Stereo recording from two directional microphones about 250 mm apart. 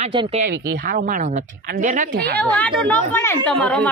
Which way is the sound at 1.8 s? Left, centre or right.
Right.